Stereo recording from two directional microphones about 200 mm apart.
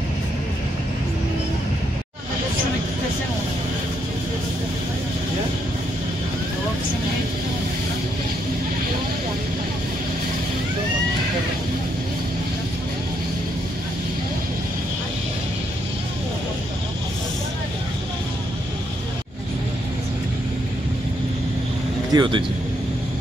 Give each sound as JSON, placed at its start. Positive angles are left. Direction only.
{"t": 22.1, "sound": "speech", "side_deg": -20}